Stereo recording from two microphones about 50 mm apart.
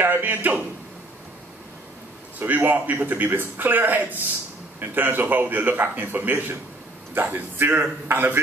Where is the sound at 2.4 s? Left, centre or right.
Right.